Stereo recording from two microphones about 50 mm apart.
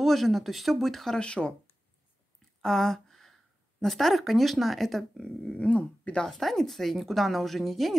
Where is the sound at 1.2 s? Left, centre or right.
Left.